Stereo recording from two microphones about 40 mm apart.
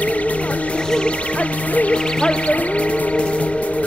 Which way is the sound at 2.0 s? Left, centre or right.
Left.